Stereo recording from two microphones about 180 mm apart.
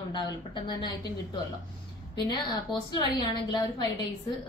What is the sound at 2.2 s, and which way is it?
A woman's voice, 25° left (ahead or behind).